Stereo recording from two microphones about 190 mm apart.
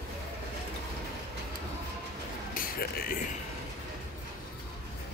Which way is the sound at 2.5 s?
50° left (ahead or behind).